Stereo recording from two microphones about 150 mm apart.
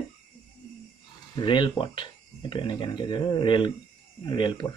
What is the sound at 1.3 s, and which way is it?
Speech, 30° left (ahead or behind).